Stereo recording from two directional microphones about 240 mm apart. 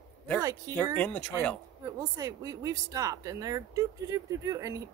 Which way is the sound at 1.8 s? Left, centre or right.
Centre.